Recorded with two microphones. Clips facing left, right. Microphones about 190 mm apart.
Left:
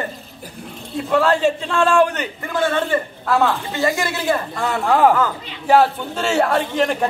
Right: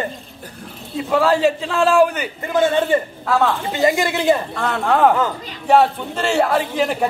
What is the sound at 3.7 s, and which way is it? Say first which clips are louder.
Speech: right 3 dB; 20° right (ahead or behind).